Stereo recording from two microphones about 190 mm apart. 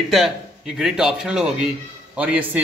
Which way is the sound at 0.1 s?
Centre (ahead or behind).